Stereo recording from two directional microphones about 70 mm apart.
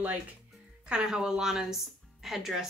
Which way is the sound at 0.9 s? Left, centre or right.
Centre.